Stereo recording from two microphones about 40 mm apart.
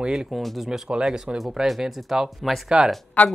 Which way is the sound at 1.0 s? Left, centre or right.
Centre.